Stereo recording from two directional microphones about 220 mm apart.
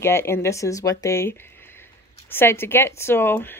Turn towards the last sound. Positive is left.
turn(degrees=10)  # may be behind; listen again after turning